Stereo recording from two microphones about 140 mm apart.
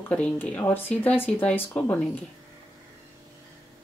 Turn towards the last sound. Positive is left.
turn(degrees=10)  # may be behind; listen again after turning